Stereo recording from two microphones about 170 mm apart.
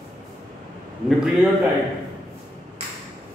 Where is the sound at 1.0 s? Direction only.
Centre (ahead or behind).